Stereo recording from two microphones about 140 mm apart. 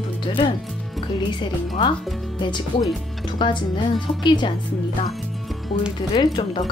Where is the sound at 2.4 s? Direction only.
35° left (ahead or behind).